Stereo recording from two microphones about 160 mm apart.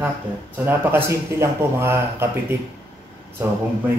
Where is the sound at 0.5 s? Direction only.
10° right (ahead or behind).